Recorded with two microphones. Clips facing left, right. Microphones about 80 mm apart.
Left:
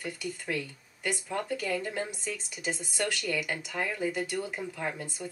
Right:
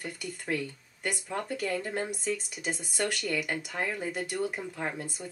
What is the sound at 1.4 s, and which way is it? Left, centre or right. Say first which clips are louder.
Speech: right 1 dB; centre.